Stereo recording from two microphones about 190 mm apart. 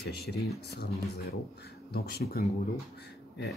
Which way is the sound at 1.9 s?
55° left (ahead or behind).